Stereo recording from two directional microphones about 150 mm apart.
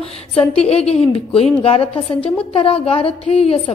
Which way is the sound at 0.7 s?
45° left (ahead or behind).